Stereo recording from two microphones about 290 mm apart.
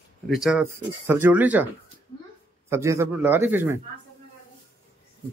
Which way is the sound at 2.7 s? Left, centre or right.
Centre.